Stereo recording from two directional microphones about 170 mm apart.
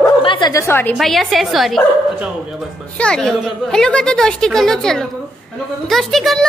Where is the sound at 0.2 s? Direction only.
30° left (ahead or behind).